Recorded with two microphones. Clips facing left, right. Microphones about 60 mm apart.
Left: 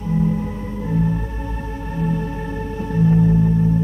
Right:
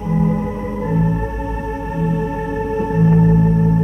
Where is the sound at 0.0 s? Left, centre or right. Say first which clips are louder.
Right 3 dB; right.